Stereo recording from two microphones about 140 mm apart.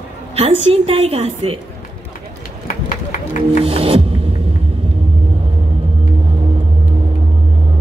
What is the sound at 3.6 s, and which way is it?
Music, 45° right (ahead or behind).